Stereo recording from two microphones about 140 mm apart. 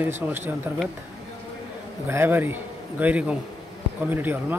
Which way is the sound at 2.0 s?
15° right (ahead or behind).